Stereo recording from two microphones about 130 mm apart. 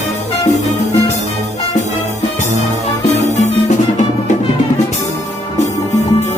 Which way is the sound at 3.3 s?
60° left (ahead or behind).